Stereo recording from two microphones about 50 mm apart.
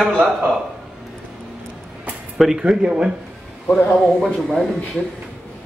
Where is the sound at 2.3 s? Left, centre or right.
Centre.